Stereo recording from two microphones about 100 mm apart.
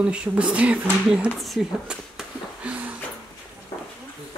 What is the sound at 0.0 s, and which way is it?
Speech, 10° right (ahead or behind).